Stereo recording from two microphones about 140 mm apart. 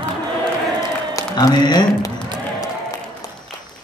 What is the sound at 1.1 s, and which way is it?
Speech, 30° left (ahead or behind).